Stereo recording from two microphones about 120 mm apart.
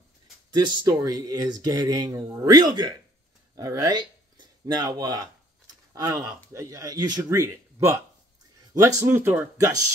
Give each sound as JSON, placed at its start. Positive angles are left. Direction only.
{"t": 0.5, "sound": "speech", "side_deg": -35}